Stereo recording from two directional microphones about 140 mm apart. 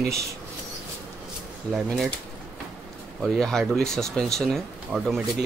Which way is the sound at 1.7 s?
Centre (ahead or behind).